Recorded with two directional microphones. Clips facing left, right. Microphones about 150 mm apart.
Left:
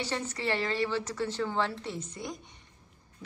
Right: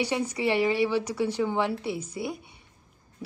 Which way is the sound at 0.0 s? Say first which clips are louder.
Right 6 dB; 10° right (ahead or behind).